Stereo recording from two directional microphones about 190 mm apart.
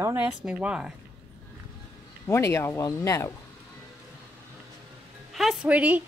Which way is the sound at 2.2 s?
15° left (ahead or behind).